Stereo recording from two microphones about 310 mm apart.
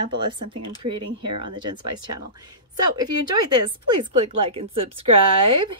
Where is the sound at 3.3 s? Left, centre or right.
Right.